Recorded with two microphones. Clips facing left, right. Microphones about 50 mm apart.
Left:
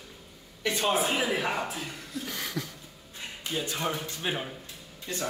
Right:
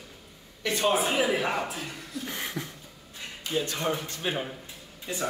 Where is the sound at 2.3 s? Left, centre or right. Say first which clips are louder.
Right 1 dB; right.